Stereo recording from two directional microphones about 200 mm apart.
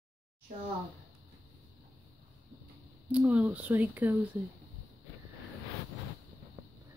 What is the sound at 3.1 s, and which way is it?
Speech, 5° right (ahead or behind).